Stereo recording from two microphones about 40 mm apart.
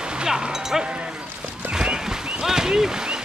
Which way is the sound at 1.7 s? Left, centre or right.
Centre.